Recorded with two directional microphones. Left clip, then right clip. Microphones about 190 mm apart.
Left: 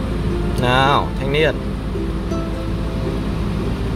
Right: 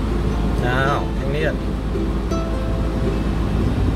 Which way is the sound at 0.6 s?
45° left (ahead or behind).